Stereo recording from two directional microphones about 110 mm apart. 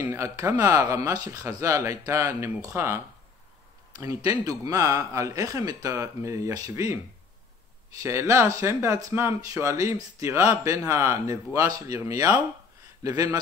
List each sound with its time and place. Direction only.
0.0 s speech: 25° right (ahead or behind)
4.0 s speech: 30° right (ahead or behind)
8.0 s a man's voice: 25° right (ahead or behind)